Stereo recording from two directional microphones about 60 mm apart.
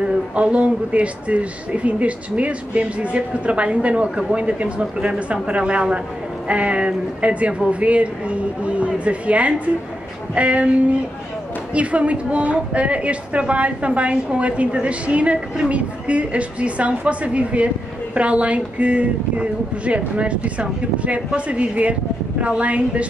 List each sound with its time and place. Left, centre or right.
0.0 s a woman's voice: centre